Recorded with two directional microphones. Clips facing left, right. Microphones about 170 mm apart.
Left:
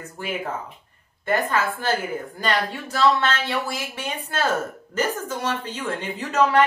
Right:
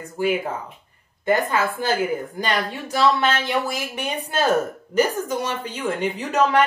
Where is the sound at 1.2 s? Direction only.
15° right (ahead or behind).